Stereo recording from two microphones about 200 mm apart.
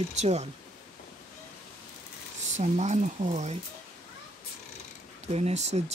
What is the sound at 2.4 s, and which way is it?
Speech, 35° right (ahead or behind).